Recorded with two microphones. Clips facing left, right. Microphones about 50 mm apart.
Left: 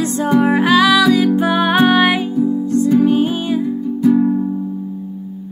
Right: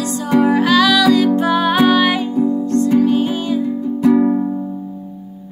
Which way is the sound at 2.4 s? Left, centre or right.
Centre.